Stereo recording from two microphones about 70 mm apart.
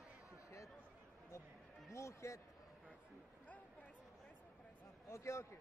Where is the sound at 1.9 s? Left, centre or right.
Left.